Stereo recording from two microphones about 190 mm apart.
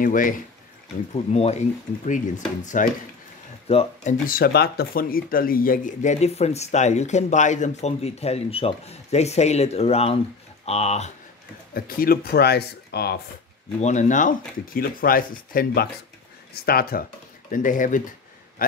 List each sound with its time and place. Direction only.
0.0 s speech: 45° left (ahead or behind)
1.1 s speech: 35° left (ahead or behind)
3.6 s speech: 30° left (ahead or behind)
4.3 s speech: 55° left (ahead or behind); by 11.1 s 35° left (ahead or behind)
11.7 s speech: 50° left (ahead or behind)
13.7 s speech: 40° left (ahead or behind)